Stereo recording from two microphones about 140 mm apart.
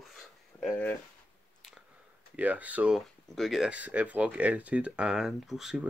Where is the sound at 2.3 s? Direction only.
10° right (ahead or behind).